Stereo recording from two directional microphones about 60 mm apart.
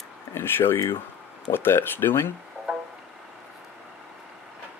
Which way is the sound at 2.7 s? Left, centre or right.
Centre.